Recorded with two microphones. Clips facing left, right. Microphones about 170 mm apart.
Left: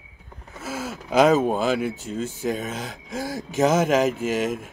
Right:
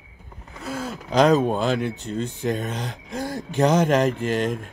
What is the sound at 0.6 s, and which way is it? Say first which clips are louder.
Speech: right 1 dB; 5° left (ahead or behind).